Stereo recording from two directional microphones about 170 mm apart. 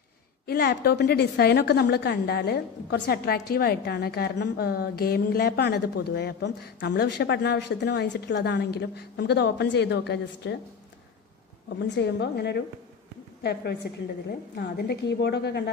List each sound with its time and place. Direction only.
0.5 s a woman's voice: 70° left (ahead or behind); by 10.6 s 85° left
11.9 s a woman's voice: 90° left